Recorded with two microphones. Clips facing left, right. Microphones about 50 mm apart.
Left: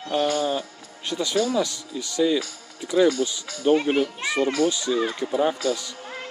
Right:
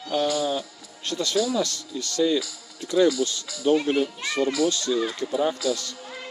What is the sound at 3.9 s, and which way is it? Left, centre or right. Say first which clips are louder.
Speech: left 1 dB; left.